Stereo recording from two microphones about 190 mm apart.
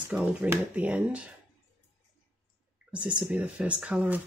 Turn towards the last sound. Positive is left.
turn(degrees=-5)  # may be behind; listen again after turning